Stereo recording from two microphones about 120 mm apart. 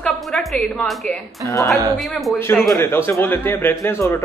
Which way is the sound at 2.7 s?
20° left (ahead or behind).